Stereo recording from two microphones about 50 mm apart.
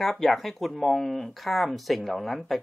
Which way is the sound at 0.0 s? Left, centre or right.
Centre.